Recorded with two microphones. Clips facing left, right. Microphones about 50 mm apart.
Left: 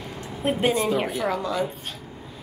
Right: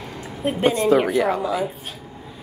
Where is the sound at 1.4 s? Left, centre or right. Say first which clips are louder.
Right 3 dB; centre.